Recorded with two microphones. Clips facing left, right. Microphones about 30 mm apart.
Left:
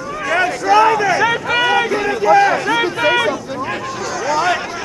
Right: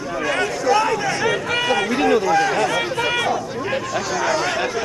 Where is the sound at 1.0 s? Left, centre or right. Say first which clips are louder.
Left 6 dB; centre.